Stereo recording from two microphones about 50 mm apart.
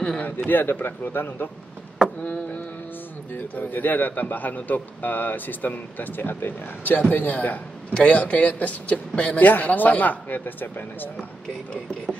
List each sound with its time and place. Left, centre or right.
0.5 s speech: left
2.2 s a man's voice: left
9.5 s a man's voice: left
11.7 s speech: left